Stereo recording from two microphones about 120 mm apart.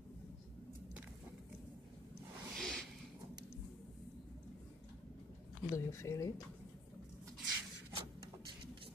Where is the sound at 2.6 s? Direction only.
5° left (ahead or behind).